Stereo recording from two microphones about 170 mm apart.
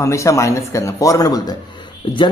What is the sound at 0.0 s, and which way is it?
A man's voice, 20° left (ahead or behind).